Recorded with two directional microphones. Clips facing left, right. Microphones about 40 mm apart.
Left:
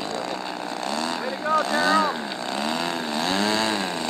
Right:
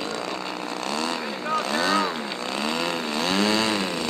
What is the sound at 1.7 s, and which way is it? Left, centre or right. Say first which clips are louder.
Chainsaw: left 1 dB; centre.